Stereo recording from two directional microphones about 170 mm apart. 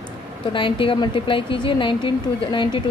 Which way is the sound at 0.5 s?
30° left (ahead or behind).